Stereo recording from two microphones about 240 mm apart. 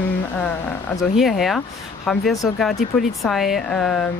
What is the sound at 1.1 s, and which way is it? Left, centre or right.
Speech, centre.